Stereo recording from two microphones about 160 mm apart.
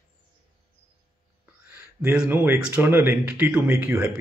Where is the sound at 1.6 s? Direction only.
10° right (ahead or behind).